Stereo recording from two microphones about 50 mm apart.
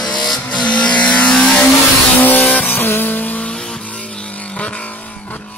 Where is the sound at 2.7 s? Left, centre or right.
Left.